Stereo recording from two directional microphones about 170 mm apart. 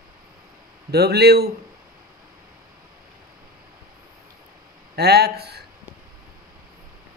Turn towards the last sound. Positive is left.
turn(degrees=-70)  # may be behind; listen again after turning